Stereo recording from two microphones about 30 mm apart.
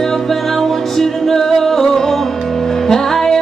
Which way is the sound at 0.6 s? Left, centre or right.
Centre.